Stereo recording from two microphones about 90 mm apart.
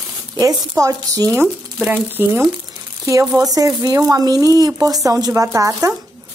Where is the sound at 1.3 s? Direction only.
25° right (ahead or behind).